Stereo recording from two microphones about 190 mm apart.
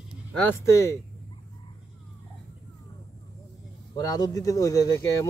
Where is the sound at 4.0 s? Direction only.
20° left (ahead or behind).